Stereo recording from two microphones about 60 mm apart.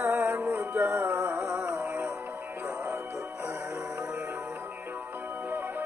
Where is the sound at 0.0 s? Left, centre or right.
Right.